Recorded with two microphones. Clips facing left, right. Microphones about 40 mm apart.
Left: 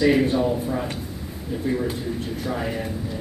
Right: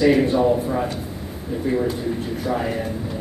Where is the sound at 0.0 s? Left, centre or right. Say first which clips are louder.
Right 3 dB; centre.